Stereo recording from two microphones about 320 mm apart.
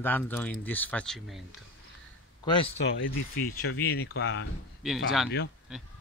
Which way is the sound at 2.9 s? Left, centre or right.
Left.